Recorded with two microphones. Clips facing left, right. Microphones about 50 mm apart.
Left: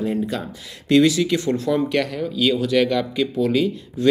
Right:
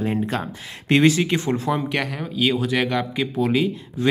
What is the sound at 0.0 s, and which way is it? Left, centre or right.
Speech, right.